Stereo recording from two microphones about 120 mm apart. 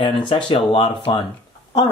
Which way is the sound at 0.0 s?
45° left (ahead or behind).